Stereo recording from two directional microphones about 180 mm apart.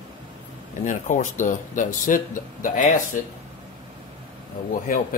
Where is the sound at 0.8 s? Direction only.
45° left (ahead or behind).